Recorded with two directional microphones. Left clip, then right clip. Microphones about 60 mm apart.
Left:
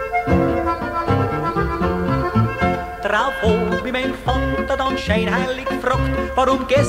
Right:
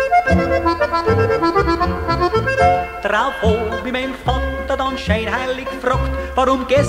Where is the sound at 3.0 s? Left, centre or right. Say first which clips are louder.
Right 1 dB; right.